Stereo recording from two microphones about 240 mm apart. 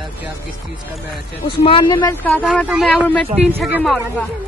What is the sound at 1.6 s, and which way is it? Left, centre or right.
Speech, left.